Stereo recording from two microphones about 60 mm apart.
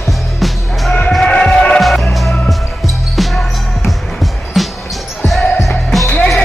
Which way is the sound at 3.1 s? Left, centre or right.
Centre.